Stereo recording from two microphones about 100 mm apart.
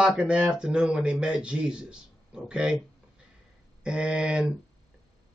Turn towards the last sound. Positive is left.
turn(degrees=-10)  # may be behind; listen again after turning